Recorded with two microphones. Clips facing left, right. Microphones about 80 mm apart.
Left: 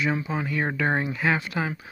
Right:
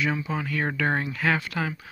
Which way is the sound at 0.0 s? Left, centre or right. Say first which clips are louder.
Left 1 dB; left.